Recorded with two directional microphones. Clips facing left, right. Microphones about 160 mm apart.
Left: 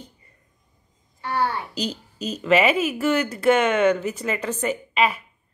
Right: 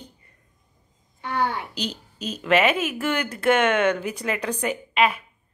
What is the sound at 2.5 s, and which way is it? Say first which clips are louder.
Speech: left 2 dB; 10° left (ahead or behind).